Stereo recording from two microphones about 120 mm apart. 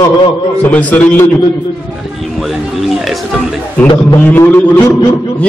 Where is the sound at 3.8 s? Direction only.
10° left (ahead or behind).